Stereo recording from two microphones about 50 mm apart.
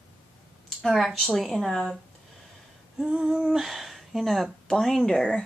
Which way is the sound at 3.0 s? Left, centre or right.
Centre.